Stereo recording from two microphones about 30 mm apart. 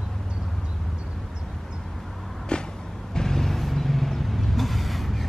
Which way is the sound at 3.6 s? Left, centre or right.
Centre.